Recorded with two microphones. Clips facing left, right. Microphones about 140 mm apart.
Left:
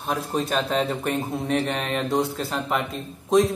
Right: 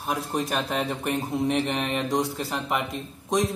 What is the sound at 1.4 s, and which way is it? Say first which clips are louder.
Speech: right 1 dB; 15° right (ahead or behind).